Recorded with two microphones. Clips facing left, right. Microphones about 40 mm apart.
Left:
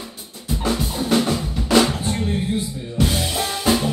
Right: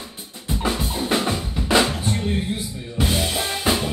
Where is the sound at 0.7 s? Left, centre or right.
Centre.